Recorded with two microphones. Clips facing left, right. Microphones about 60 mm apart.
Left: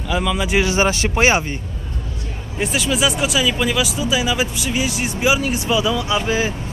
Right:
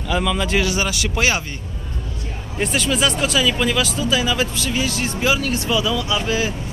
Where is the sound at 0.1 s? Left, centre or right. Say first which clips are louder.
Even; centre.